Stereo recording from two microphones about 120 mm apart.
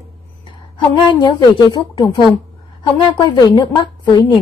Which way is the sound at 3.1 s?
40° left (ahead or behind).